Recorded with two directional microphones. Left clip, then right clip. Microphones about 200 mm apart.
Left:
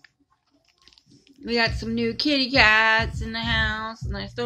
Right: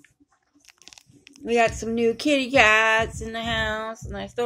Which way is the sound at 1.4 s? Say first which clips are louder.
Right 3 dB; 15° left (ahead or behind).